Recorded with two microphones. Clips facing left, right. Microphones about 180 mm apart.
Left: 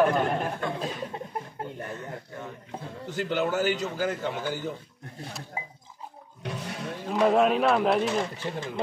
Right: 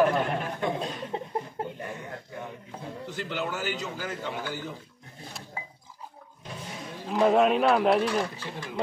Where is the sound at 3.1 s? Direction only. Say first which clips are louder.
Left 7 dB; 45° left (ahead or behind).